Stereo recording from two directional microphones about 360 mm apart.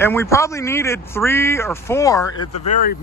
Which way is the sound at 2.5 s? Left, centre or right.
Left.